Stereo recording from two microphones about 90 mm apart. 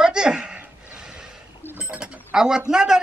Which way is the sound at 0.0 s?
10° right (ahead or behind).